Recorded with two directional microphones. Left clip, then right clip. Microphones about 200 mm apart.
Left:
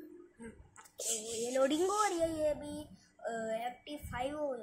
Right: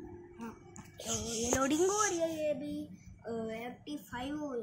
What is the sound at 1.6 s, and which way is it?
Speech, centre (ahead or behind).